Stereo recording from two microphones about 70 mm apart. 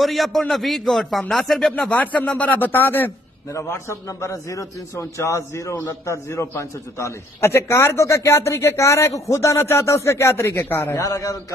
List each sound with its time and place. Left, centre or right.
0.0 s a man's voice: centre
1.9 s a man's voice: centre
3.5 s a man's voice: left
11.0 s a man's voice: left